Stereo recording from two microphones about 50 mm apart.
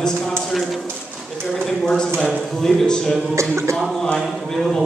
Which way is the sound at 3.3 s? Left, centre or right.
Right.